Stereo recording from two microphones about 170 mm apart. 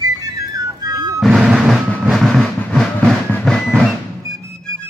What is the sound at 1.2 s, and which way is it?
Vehicle, centre (ahead or behind).